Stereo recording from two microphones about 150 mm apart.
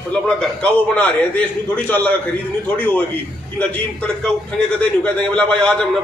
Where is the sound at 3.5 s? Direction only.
10° left (ahead or behind).